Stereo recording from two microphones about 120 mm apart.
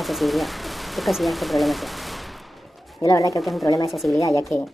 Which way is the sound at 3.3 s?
Centre (ahead or behind).